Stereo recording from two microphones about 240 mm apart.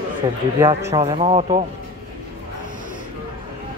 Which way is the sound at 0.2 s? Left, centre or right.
Centre.